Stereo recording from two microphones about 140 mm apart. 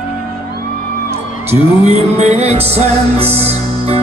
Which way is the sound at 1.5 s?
50° right (ahead or behind).